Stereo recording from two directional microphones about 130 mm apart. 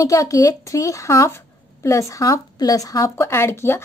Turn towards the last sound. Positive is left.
turn(degrees=20)  # may be behind; listen again after turning